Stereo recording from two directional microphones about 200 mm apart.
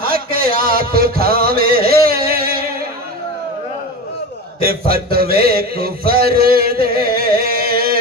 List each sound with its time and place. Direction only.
0.0 s music: 45° right (ahead or behind)
1.9 s a sound: 50° right (ahead or behind)
4.6 s music: 50° right (ahead or behind)